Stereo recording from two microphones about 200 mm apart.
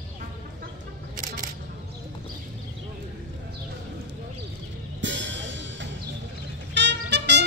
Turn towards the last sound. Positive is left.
turn(degrees=-60)  # may be behind; listen again after turning